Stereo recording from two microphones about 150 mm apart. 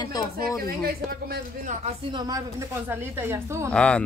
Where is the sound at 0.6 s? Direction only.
85° right.